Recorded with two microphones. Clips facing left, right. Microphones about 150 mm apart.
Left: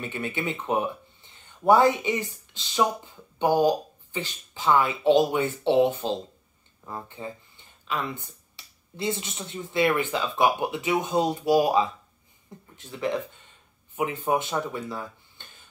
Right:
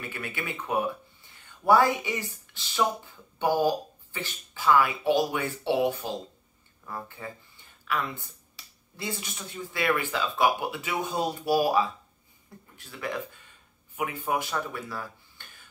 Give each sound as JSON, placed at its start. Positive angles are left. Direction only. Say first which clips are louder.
{"t": 0.0, "sound": "speech", "louder": "left 5 dB", "side_deg": 25}